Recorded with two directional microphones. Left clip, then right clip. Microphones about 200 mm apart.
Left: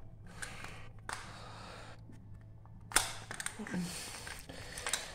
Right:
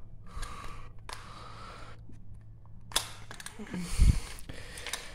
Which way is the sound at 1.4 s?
50° right (ahead or behind).